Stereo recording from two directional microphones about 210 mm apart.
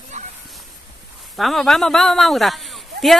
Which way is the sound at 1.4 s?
Centre (ahead or behind).